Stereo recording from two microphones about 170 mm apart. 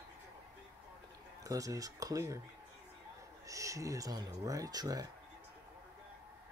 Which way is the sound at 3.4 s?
20° right (ahead or behind).